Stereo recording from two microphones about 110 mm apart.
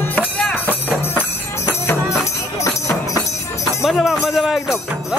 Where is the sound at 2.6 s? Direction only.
30° left (ahead or behind).